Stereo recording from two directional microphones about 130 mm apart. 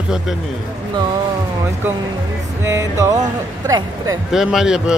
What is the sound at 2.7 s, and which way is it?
Speech, 25° right (ahead or behind).